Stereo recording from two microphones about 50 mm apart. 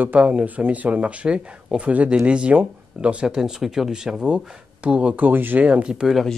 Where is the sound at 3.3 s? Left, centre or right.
Centre.